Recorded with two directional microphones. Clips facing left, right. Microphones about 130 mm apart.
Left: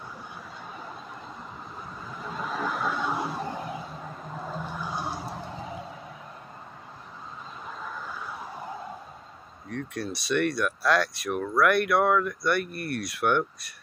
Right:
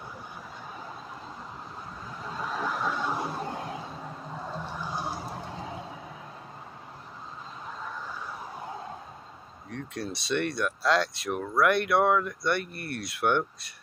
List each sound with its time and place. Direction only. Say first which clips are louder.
2.1 s a sound: left 1 dB; centre (ahead or behind)
4.3 s vehicle: left 2 dB; 5° left (ahead or behind)
9.7 s speech: left 2 dB; 20° right (ahead or behind)